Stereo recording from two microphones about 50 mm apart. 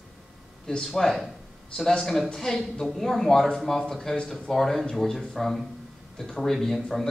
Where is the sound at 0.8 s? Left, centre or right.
Centre.